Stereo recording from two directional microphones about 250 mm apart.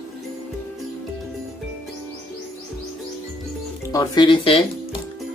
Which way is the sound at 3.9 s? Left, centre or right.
Centre.